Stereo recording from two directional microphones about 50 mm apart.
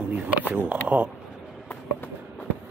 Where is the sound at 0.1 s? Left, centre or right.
Right.